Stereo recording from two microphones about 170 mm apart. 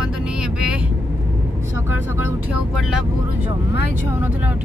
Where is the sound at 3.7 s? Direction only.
75° left (ahead or behind).